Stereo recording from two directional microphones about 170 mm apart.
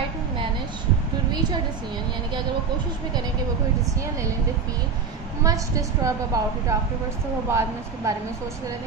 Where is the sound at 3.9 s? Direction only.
20° right (ahead or behind).